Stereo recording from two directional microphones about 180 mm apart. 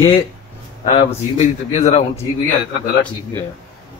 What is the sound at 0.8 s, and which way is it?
A man's voice, 35° left (ahead or behind).